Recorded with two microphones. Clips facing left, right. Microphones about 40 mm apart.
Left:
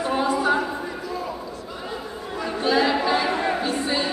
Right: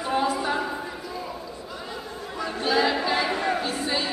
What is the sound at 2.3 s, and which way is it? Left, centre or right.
Chatter, centre.